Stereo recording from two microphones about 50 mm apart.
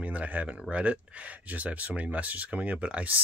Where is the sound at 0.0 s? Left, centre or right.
Right.